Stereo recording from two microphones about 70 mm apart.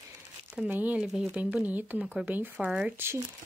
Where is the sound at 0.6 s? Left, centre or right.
Right.